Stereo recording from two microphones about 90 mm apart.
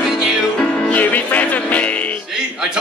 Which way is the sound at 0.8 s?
15° left (ahead or behind).